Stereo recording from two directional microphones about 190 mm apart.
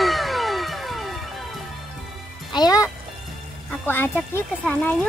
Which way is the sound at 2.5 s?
20° left (ahead or behind).